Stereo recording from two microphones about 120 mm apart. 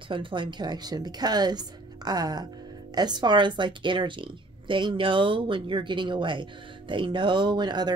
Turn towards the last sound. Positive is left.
turn(degrees=-35)  # may be behind; listen again after turning